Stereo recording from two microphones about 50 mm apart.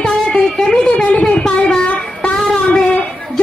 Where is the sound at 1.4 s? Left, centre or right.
Centre.